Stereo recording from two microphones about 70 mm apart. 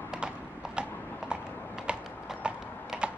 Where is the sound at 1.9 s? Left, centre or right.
Centre.